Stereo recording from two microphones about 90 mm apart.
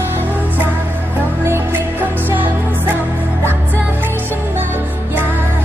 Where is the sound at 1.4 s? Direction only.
25° right (ahead or behind).